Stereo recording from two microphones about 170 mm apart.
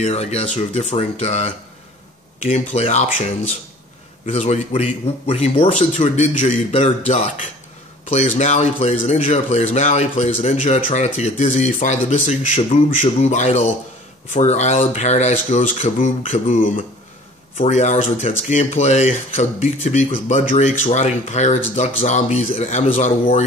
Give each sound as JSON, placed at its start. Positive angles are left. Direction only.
{"t": 0.0, "sound": "a man's voice", "side_deg": 35}
{"t": 2.7, "sound": "a man's voice", "side_deg": 40}
{"t": 4.3, "sound": "a man's voice", "side_deg": 40}